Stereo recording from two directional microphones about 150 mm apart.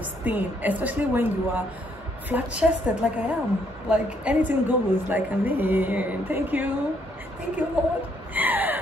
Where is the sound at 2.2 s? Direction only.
10° right (ahead or behind).